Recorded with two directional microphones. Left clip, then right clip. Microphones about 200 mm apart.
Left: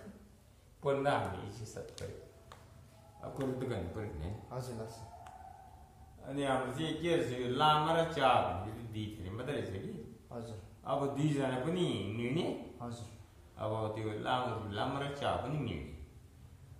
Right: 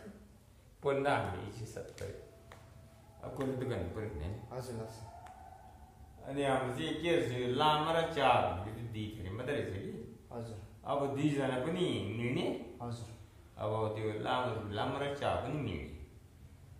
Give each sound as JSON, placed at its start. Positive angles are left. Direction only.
{"t": 0.8, "sound": "a man's voice", "side_deg": 10}
{"t": 3.2, "sound": "a man's voice", "side_deg": 15}
{"t": 6.2, "sound": "a man's voice", "side_deg": 10}